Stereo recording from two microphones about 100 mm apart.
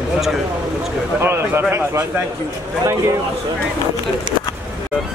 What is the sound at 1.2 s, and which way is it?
Speech, 20° right (ahead or behind).